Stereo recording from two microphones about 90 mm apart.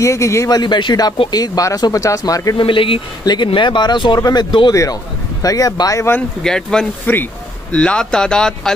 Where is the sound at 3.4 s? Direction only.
65° left (ahead or behind).